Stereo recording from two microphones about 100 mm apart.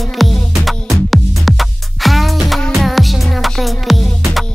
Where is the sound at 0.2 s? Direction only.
Centre (ahead or behind).